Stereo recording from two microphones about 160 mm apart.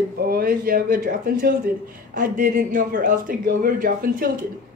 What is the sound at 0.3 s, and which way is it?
A man's voice, 65° right (ahead or behind).